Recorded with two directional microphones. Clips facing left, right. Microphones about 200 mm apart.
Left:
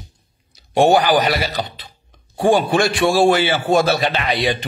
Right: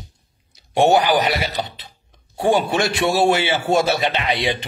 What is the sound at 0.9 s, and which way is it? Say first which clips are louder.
A man's voice: left 1 dB; 25° right (ahead or behind).